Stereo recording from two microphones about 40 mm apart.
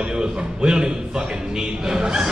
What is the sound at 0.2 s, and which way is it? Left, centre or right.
Speech, centre.